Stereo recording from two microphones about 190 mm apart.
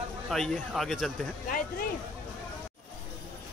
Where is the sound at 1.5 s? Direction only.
45° left (ahead or behind).